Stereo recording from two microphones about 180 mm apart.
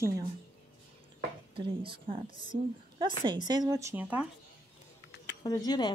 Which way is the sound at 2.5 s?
50° right (ahead or behind).